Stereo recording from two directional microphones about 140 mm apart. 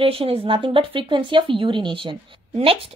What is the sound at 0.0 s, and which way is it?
Speech, 40° right (ahead or behind).